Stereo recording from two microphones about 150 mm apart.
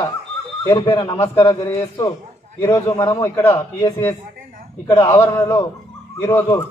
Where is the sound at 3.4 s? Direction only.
35° left (ahead or behind).